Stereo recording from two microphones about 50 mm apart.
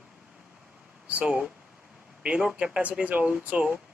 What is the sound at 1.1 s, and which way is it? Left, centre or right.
Speech, right.